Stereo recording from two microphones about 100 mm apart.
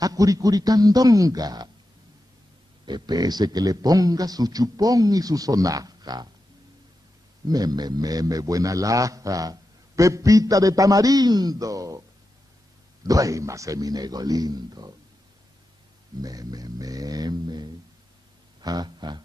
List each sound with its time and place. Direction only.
0.0 s a man's voice: 35° right (ahead or behind)
2.8 s a man's voice: 45° right (ahead or behind)
7.4 s a man's voice: 40° right (ahead or behind)
13.0 s a man's voice: 35° right (ahead or behind)
16.2 s a man's voice: 40° right (ahead or behind)
18.6 s a sound: 40° right (ahead or behind)